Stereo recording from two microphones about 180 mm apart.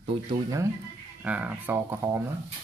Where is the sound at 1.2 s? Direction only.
10° right (ahead or behind).